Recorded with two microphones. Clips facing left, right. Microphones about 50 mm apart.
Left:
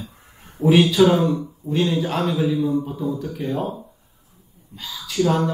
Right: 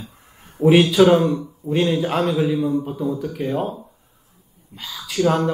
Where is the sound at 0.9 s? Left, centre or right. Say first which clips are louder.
Right 2 dB; right.